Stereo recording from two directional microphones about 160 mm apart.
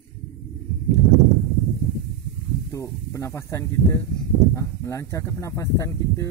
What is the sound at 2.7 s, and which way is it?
Speech, 20° left (ahead or behind).